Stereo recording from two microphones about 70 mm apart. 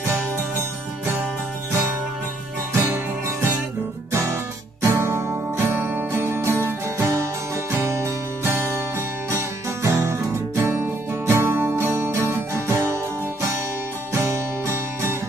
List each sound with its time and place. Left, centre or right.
2.7 s music: right